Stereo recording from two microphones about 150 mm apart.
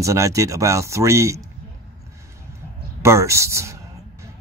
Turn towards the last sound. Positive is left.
turn(degrees=-20)  # may be behind; listen again after turning